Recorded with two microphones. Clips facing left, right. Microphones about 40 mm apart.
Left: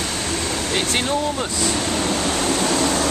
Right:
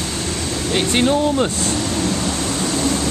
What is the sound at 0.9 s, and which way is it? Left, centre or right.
Speech, centre.